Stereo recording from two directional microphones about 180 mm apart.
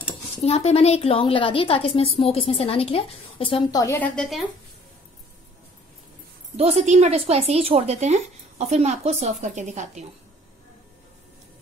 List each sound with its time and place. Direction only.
0.4 s a woman's voice: 35° left (ahead or behind)
3.8 s a woman's voice: 10° left (ahead or behind)
6.5 s a woman's voice: 35° right (ahead or behind)